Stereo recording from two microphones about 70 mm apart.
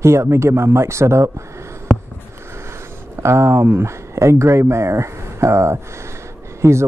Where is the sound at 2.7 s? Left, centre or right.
Right.